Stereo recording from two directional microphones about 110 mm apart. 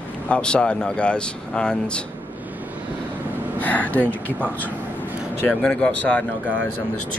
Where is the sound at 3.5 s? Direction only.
15° left (ahead or behind).